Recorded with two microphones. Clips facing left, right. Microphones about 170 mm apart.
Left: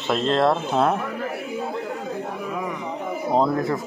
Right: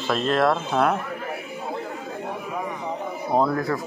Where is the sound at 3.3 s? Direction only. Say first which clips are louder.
Left 1 dB; 20° left (ahead or behind).